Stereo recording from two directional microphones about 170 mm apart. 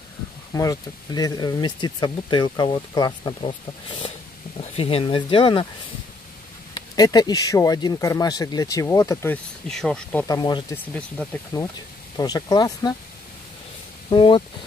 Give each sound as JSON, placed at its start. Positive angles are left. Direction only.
{"t": 0.5, "sound": "speech", "side_deg": 20}
{"t": 6.7, "sound": "speech", "side_deg": 25}
{"t": 9.7, "sound": "speech", "side_deg": 5}
{"t": 10.2, "sound": "speech", "side_deg": 25}
{"t": 10.7, "sound": "speech", "side_deg": 5}
{"t": 11.5, "sound": "speech", "side_deg": 20}
{"t": 14.1, "sound": "speech", "side_deg": 30}